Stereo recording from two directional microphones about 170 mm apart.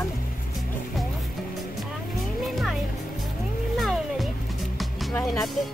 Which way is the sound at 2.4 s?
Centre (ahead or behind).